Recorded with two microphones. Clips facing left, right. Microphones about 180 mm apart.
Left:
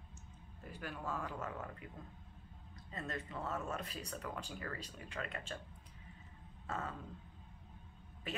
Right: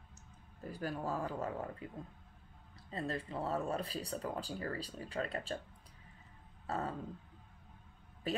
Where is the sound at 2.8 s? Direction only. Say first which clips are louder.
Right 5 dB; 30° right (ahead or behind).